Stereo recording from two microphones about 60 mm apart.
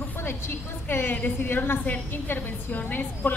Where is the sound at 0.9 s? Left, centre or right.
Left.